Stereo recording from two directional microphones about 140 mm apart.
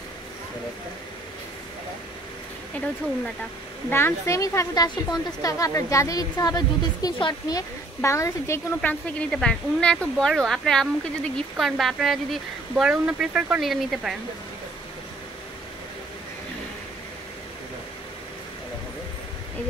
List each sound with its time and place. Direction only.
3.9 s speech: 20° left (ahead or behind); by 14.1 s centre (ahead or behind)